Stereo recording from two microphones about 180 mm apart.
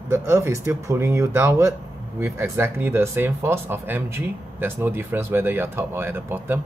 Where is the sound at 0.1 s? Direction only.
15° right (ahead or behind).